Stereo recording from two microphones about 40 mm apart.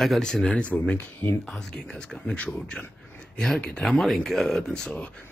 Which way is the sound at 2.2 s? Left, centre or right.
Left.